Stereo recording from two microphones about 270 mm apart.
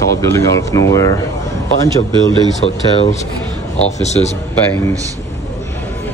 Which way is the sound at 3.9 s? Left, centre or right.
Left.